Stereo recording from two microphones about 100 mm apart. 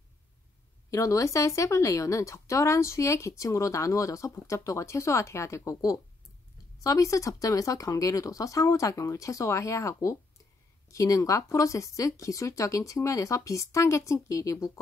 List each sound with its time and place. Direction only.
0.8 s speech: 30° left (ahead or behind)